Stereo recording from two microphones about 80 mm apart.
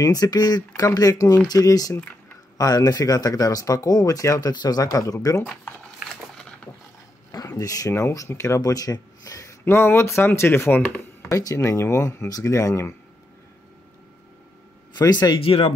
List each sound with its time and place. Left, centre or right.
0.0 s speech: left
4.5 s speech: left
7.3 s speech: left
8.5 s a sound: left
9.7 s speech: left
11.2 s speech: left
12.3 s speech: left
15.0 s speech: left